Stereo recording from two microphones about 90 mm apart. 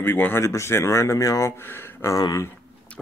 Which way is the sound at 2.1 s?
40° left (ahead or behind).